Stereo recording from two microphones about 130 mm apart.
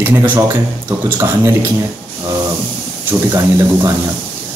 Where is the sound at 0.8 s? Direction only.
20° right (ahead or behind).